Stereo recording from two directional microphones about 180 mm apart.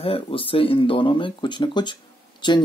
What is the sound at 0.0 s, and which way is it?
Speech, 30° left (ahead or behind).